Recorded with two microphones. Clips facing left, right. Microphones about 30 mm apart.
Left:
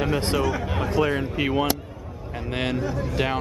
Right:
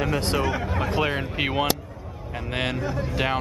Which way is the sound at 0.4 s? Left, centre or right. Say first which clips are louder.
Even; centre.